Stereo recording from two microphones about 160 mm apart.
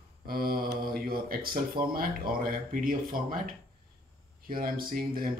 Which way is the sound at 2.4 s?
60° right (ahead or behind).